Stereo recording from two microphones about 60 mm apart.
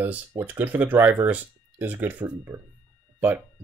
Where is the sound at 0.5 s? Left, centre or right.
Right.